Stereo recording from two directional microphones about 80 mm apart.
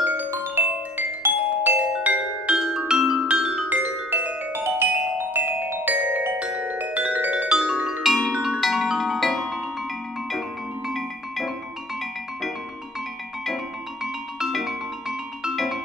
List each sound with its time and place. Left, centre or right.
0.0 s glockenspiel: right
0.3 s marimba: right; by 3.6 s centre
3.6 s music: right
8.0 s music: centre
10.9 s music: centre
14.0 s music: centre